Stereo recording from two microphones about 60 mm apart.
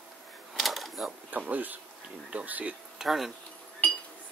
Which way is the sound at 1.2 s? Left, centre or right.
Right.